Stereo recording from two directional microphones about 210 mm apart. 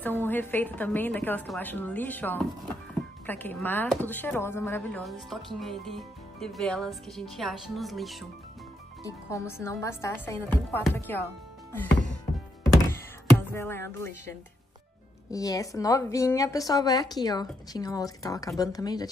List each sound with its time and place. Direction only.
0.0 s a woman's voice: 10° left (ahead or behind)
9.0 s a woman's voice: 15° left (ahead or behind)
12.9 s music: 10° left (ahead or behind)
15.3 s a woman's voice: 15° left (ahead or behind)